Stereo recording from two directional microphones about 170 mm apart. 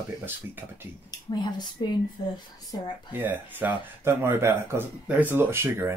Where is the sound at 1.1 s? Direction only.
25° left (ahead or behind).